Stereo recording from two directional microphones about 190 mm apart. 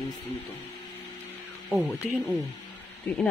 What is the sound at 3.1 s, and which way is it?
Speech, 10° left (ahead or behind).